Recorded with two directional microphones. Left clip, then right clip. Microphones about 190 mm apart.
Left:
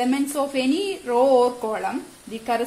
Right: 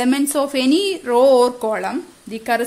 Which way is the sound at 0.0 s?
55° right (ahead or behind).